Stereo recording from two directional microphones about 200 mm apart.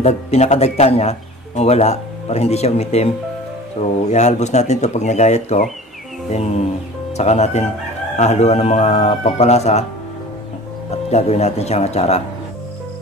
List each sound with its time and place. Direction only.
0.0 s a man's voice: 35° left (ahead or behind)
4.1 s a man's voice: 35° left (ahead or behind)
7.2 s a man's voice: 35° left (ahead or behind)
10.9 s a man's voice: 35° left (ahead or behind)